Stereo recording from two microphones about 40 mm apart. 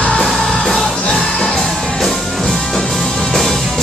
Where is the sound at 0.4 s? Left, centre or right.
Centre.